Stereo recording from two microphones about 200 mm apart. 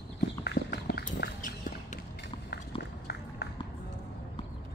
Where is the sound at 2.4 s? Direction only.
55° left (ahead or behind).